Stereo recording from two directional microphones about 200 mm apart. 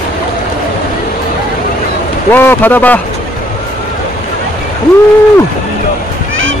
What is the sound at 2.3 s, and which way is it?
Speech, 10° left (ahead or behind).